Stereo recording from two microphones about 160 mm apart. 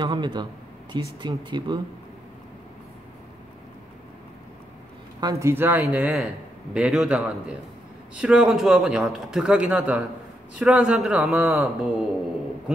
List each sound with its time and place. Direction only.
0.0 s speech: 25° right (ahead or behind)
5.2 s a man's voice: 20° right (ahead or behind)